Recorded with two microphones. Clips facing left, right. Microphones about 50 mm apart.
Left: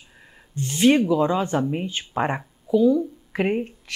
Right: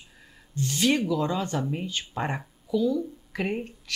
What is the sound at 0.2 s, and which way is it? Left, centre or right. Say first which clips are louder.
Speech: even; left.